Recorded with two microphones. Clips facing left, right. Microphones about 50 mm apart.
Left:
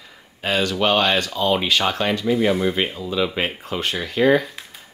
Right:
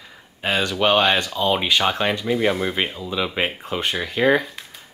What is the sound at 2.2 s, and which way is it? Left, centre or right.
Speech, centre.